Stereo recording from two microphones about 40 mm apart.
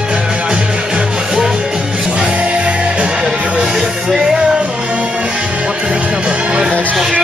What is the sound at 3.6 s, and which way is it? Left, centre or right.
Music, centre.